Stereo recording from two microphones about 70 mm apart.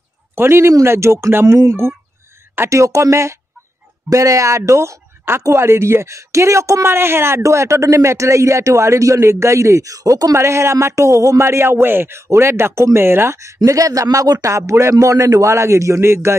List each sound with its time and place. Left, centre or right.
0.4 s speech: right
10.3 s speech: right
13.7 s speech: right